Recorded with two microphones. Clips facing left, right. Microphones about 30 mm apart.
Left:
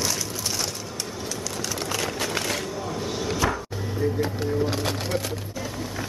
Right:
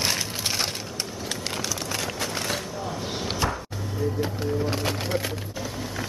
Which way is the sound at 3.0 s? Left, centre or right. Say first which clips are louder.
Left 2 dB; right.